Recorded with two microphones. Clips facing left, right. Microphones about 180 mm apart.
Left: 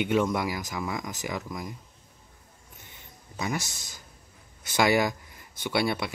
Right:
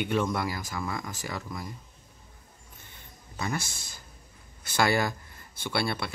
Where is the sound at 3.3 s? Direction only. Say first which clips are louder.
Left 1 dB; 15° left (ahead or behind).